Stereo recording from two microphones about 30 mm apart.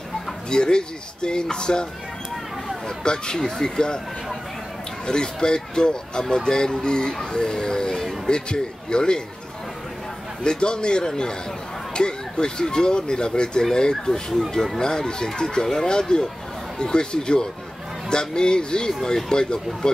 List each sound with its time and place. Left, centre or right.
0.5 s speech: left
3.0 s speech: left
5.0 s speech: left
10.4 s speech: left